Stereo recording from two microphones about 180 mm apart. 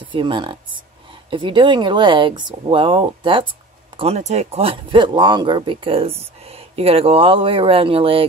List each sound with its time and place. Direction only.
0.1 s speech: 25° right (ahead or behind)